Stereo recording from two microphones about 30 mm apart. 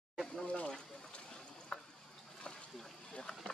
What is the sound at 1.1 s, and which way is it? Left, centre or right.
Boat, left.